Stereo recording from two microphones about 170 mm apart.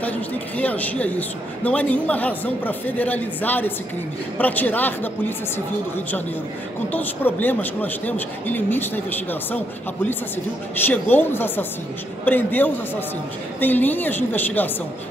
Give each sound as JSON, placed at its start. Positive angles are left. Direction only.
{"t": 0.0, "sound": "speech", "side_deg": 10}
{"t": 6.9, "sound": "speech", "side_deg": 10}
{"t": 10.9, "sound": "speech", "side_deg": 10}